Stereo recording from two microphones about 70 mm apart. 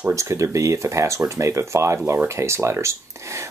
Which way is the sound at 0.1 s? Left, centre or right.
Right.